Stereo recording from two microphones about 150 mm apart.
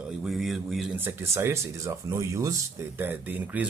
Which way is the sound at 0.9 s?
15° right (ahead or behind).